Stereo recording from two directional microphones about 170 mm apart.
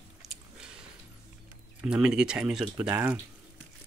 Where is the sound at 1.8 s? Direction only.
5° right (ahead or behind).